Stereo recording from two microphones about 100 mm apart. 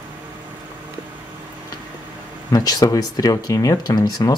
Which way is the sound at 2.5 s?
40° left (ahead or behind).